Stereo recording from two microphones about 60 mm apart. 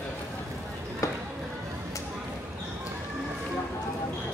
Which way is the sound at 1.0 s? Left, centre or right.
Left.